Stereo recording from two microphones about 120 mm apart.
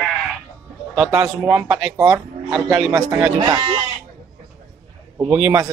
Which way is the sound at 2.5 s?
10° right (ahead or behind).